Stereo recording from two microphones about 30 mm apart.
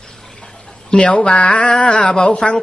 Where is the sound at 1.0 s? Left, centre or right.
Left.